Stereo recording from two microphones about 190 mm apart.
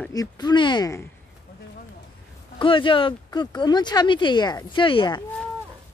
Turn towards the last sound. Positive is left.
turn(degrees=25)  # may be behind; listen again after turning